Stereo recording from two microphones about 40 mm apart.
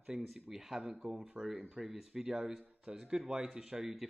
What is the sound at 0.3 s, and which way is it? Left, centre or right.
Speech, centre.